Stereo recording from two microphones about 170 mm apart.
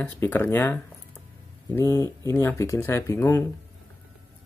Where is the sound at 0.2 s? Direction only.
10° left (ahead or behind).